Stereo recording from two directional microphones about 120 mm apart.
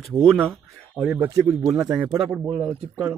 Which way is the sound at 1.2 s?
25° right (ahead or behind).